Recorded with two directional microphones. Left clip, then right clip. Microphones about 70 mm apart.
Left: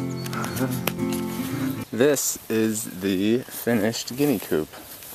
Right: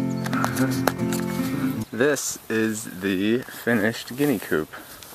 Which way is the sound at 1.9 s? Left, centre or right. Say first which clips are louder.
Left 2 dB; left.